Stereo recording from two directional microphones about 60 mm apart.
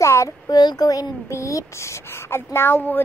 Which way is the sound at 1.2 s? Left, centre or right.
Left.